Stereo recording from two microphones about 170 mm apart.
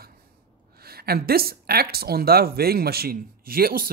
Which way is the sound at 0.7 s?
65° right (ahead or behind).